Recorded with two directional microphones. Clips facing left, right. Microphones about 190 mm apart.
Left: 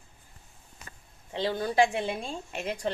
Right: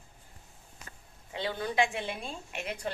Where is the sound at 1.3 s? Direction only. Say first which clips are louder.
Left 4 dB; 35° left (ahead or behind).